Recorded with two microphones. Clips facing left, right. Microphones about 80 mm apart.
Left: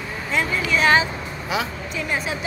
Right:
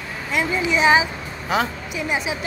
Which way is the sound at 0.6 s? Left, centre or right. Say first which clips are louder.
Right 2 dB; centre.